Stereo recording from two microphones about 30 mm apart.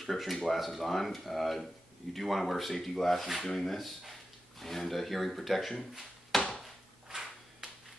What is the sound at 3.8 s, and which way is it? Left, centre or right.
Speech, centre.